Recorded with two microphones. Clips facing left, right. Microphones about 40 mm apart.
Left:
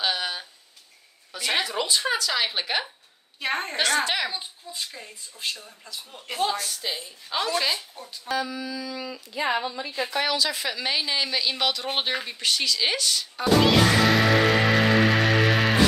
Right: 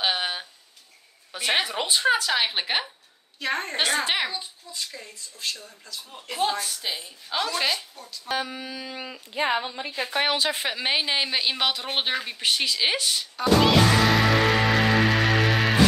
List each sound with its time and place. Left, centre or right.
0.0 s a sound: right
1.3 s a sound: right
1.7 s a woman's voice: right
3.3 s speech: centre
3.7 s a woman's voice: right
4.3 s speech: centre
6.6 s a woman's voice: centre
7.9 s speech: centre
8.3 s a woman's voice: right; by 12.2 s centre
12.3 s a woman's voice: right
13.4 s music: centre